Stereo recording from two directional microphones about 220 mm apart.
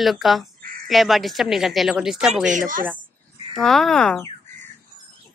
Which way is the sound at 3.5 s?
Centre (ahead or behind).